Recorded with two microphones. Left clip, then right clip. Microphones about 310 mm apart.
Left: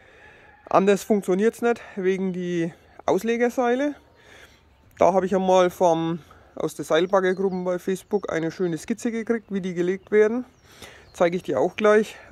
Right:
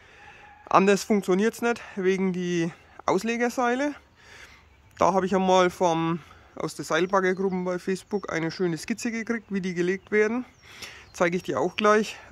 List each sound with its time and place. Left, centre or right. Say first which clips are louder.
0.7 s speech: left 1 dB; centre